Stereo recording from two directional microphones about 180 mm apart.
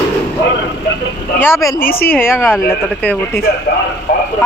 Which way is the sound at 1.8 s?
55° left (ahead or behind).